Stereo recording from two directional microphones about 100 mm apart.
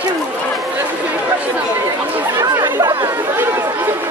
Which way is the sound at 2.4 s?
35° right (ahead or behind).